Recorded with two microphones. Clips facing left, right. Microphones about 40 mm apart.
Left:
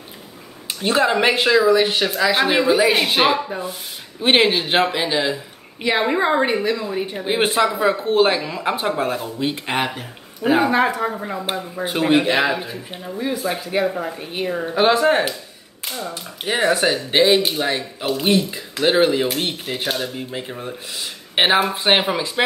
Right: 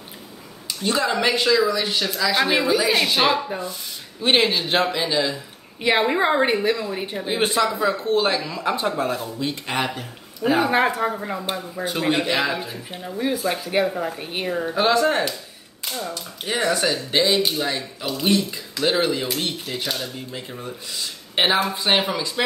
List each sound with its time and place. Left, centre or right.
0.7 s speech: left
6.0 s speech: centre
7.2 s speech: left
10.7 s speech: centre
11.1 s speech: centre; by 12.6 s left
13.0 s speech: centre
13.8 s speech: centre
14.8 s speech: left
16.6 s speech: left
21.7 s speech: left